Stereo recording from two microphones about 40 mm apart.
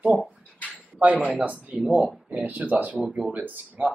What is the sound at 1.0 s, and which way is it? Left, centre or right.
Speech, right.